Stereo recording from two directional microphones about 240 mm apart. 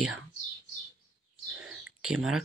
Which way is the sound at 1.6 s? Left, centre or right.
Centre.